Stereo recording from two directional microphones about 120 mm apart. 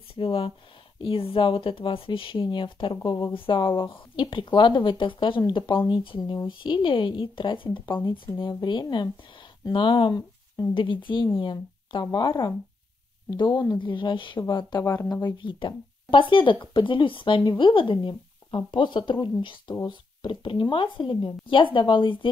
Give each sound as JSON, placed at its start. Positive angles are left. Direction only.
{"t": 0.1, "sound": "speech", "side_deg": 50}